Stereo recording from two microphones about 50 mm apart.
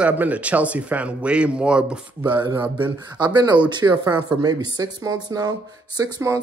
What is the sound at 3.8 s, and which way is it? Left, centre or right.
Speech, right.